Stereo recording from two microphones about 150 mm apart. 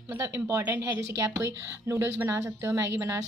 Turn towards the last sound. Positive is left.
turn(degrees=-20)  # may be behind; listen again after turning